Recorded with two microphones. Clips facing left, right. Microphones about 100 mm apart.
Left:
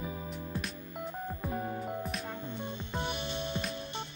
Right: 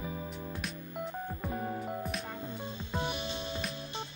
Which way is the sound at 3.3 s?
60° left (ahead or behind).